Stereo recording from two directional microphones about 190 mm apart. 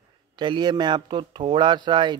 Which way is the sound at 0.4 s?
25° right (ahead or behind).